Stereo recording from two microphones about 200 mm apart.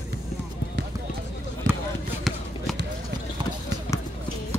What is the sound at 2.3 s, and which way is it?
Run, centre (ahead or behind).